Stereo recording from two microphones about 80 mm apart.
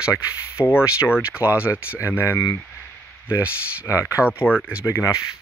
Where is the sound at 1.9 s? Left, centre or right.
Left.